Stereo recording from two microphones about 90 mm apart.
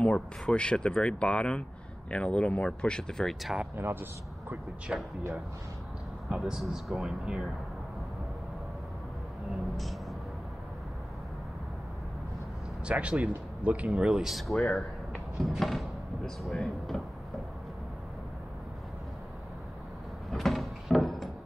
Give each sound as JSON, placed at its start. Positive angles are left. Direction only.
{"t": 0.0, "sound": "speech", "side_deg": 10}
{"t": 3.7, "sound": "speech", "side_deg": -25}
{"t": 4.9, "sound": "speech", "side_deg": -5}
{"t": 6.2, "sound": "speech", "side_deg": -5}
{"t": 12.8, "sound": "speech", "side_deg": -10}
{"t": 14.5, "sound": "speech", "side_deg": 10}
{"t": 20.2, "sound": "door", "side_deg": 0}